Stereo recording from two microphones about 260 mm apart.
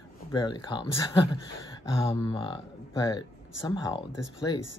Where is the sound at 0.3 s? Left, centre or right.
Centre.